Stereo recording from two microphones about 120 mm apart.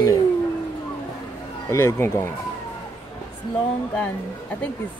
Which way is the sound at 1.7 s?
20° left (ahead or behind).